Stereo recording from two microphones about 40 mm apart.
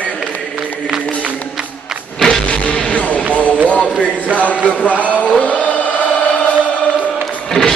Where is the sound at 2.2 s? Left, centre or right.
Centre.